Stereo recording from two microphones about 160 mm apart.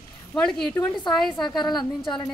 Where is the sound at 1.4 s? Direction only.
25° left (ahead or behind).